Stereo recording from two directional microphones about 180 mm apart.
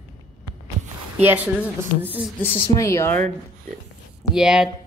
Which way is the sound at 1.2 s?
10° right (ahead or behind).